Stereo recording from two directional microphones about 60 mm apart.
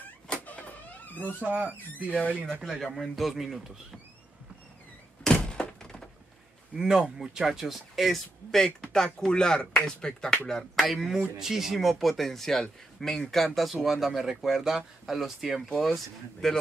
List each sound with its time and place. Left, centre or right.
0.5 s vehicle: left
1.4 s speech: right
2.0 s speech: left
2.8 s speech: centre
5.2 s thunk: centre
6.7 s speech: centre
10.8 s speech: centre